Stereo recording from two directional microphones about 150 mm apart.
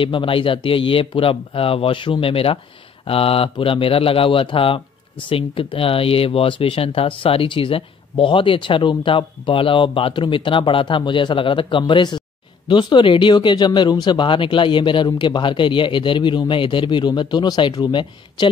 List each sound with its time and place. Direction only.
0.0 s speech: 35° left (ahead or behind)